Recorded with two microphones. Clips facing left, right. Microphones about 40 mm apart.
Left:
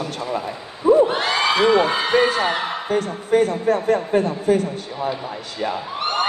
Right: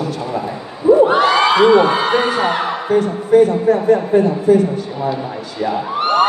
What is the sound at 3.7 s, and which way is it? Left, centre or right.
Speech, left.